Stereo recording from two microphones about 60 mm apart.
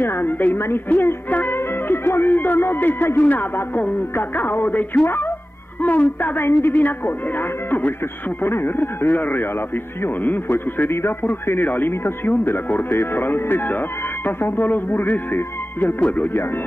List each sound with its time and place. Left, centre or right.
0.0 s speech: left